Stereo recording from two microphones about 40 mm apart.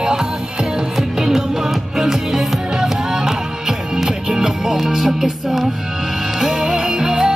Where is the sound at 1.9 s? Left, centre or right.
Centre.